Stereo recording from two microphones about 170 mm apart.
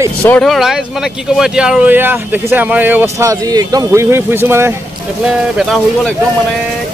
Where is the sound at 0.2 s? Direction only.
5° left (ahead or behind); by 4.7 s 15° right (ahead or behind).